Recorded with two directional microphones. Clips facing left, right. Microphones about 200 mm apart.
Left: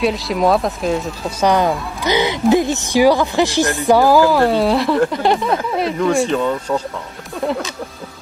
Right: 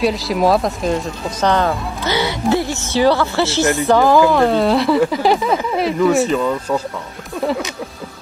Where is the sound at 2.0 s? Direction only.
15° left (ahead or behind); by 7.6 s 5° right (ahead or behind).